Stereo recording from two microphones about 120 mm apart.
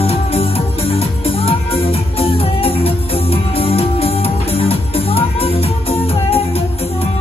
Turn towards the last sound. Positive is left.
turn(degrees=55)  # may be behind; listen again after turning